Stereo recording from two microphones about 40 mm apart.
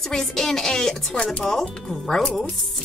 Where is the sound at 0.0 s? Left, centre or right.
Centre.